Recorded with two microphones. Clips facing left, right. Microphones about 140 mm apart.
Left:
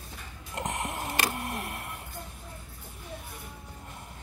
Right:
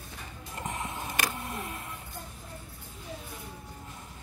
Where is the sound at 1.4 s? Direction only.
70° left (ahead or behind).